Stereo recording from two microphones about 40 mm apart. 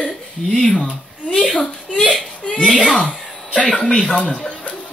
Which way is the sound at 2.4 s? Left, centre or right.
Left.